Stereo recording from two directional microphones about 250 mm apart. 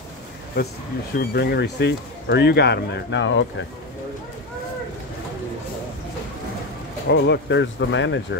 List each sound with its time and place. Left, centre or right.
0.6 s speech: left
7.1 s speech: left